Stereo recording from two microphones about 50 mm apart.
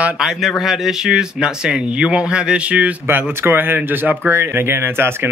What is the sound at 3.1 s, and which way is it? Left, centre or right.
Speech, right.